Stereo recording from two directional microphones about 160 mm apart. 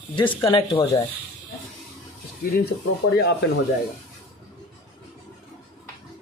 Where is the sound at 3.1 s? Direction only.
90° left.